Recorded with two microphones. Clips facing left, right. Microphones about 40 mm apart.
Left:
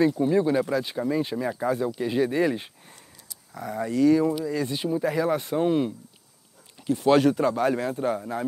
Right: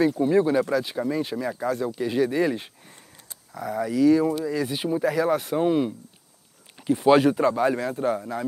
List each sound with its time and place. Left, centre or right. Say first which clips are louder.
0.2 s a man's voice: right 2 dB; centre
1.4 s a man's voice: left 1 dB; centre
5.2 s a man's voice: right 2 dB; centre
6.8 s a man's voice: right 2 dB; centre